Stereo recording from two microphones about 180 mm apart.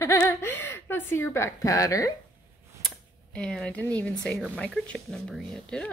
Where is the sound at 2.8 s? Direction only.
5° left (ahead or behind).